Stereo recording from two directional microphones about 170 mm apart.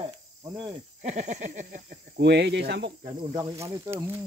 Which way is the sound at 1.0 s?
45° right (ahead or behind).